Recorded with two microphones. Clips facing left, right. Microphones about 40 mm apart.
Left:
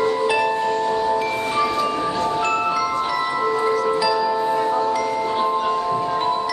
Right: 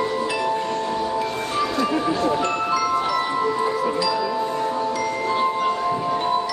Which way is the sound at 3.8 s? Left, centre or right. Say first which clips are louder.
Left 3 dB; centre.